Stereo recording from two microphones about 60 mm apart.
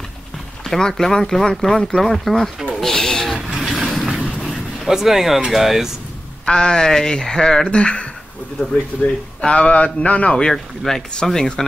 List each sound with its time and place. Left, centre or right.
0.7 s speech: centre
2.8 s a sound: centre
3.5 s vehicle: centre
4.2 s train: centre
4.8 s speech: centre
6.4 s speech: centre
9.4 s a man's voice: centre